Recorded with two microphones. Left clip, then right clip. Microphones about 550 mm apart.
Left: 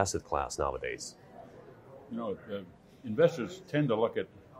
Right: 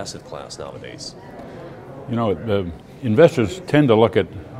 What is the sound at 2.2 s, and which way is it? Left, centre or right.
A man's voice, right.